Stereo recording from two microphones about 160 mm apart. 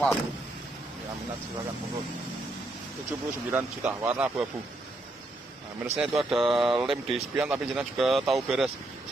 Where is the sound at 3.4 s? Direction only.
10° right (ahead or behind).